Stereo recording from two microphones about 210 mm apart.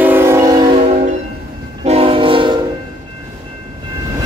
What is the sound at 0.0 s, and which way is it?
Train, 10° right (ahead or behind).